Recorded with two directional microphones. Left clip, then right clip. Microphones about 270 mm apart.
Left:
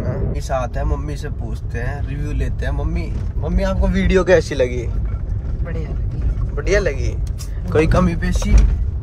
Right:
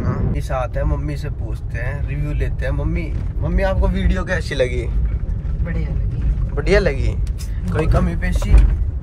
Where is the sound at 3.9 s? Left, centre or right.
Left.